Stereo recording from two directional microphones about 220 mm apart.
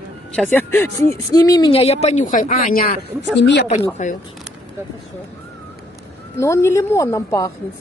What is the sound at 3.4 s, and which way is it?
Speech, 50° left (ahead or behind).